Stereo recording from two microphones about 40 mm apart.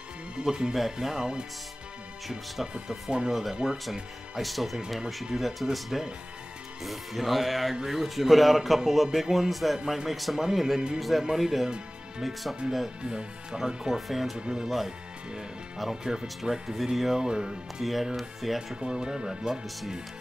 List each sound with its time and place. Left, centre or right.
0.4 s speech: centre
2.9 s speech: right
3.3 s a man's voice: centre
13.0 s speech: centre
14.4 s speech: right
16.0 s speech: centre
17.2 s speech: centre
17.8 s a man's voice: centre
18.8 s speech: right